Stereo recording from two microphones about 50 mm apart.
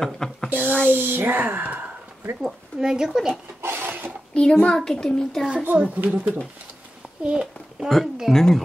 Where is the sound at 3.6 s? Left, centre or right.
Right.